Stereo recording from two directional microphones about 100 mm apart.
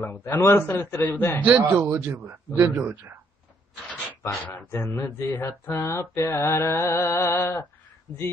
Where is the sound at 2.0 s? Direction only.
25° right (ahead or behind).